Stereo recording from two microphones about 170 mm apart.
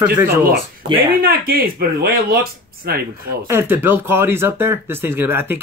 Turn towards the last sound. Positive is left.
turn(degrees=-15)  # may be behind; listen again after turning